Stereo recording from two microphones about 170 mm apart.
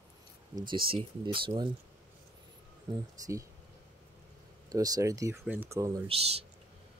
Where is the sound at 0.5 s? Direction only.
30° right (ahead or behind).